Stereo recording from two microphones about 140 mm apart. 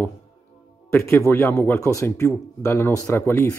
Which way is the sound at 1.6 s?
20° left (ahead or behind).